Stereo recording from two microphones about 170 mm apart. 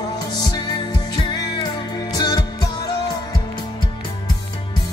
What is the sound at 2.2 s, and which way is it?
Music, 25° left (ahead or behind).